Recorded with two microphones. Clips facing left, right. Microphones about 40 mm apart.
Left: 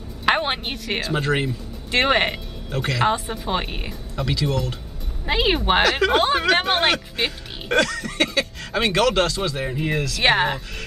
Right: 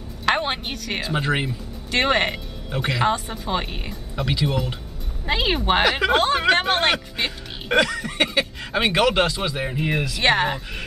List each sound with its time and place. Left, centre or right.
0.2 s music: centre
1.0 s speech: centre
1.9 s speech: centre
2.7 s speech: centre
3.1 s speech: centre
4.2 s speech: centre
5.2 s speech: centre
5.9 s speech: centre
7.2 s speech: centre
7.7 s speech: centre
10.2 s speech: centre